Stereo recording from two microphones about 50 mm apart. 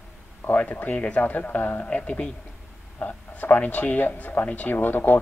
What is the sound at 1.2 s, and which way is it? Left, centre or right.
Speech, left.